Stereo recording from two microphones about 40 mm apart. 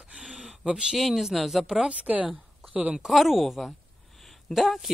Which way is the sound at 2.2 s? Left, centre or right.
Right.